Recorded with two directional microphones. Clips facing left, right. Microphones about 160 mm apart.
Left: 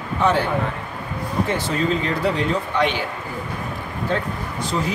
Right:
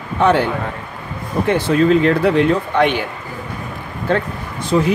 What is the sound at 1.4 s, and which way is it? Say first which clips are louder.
A man's voice: right 10 dB; 60° right (ahead or behind).